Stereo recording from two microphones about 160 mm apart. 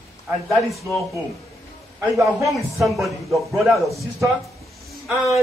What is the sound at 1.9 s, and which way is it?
Speech, 20° right (ahead or behind).